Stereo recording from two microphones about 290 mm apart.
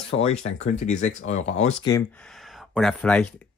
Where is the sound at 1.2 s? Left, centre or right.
Left.